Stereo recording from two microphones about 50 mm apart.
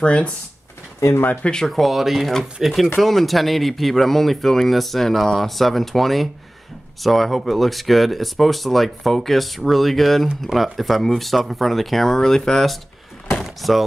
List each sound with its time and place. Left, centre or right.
0.0 s speech: left
1.4 s speech: centre
1.7 s speech: centre
13.4 s door: centre